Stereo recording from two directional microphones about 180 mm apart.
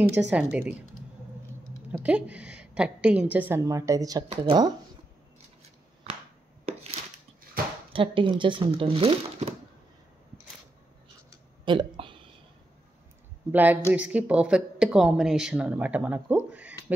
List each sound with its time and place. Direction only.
0.3 s a woman's voice: 5° right (ahead or behind)
1.9 s a woman's voice: 5° right (ahead or behind); by 4.7 s 25° right (ahead or behind)
7.6 s a sound: 55° right (ahead or behind)
7.9 s speech: 30° right (ahead or behind)
11.6 s a sound: 25° right (ahead or behind)
13.5 s a woman's voice: 10° right (ahead or behind)